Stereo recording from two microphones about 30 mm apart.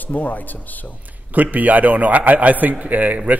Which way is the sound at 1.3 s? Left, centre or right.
Right.